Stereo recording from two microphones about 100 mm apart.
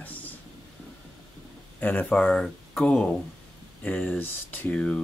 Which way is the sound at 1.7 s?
15° left (ahead or behind).